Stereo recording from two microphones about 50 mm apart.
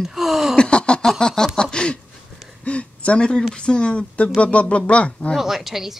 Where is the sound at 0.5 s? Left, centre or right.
Left.